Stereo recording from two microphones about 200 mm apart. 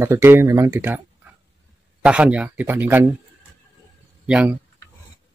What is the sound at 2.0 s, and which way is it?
Speech, 5° right (ahead or behind).